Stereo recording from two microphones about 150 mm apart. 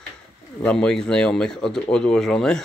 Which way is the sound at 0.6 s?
5° left (ahead or behind).